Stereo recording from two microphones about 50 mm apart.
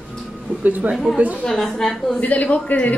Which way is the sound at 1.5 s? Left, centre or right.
Centre.